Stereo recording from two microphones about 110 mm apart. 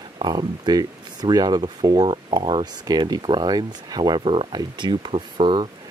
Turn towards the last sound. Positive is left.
turn(degrees=-50)  # may be behind; listen again after turning